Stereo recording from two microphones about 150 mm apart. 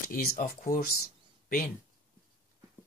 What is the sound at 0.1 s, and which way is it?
Speech, 70° left (ahead or behind).